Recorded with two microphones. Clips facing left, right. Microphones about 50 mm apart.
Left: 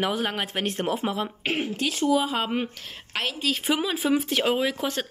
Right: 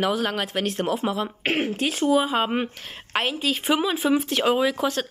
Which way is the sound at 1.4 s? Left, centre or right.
Right.